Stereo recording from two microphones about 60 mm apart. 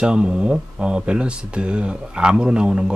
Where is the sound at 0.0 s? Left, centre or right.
Centre.